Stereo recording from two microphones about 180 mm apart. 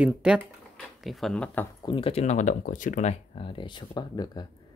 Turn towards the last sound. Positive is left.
turn(degrees=25)  # may be behind; listen again after turning